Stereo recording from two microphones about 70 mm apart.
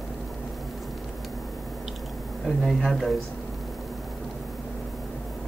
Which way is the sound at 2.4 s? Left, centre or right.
Centre.